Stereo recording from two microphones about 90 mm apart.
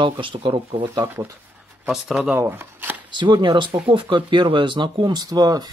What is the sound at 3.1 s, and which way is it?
Speech, 60° right (ahead or behind).